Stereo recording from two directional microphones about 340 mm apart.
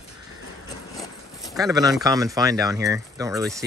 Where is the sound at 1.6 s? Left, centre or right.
Centre.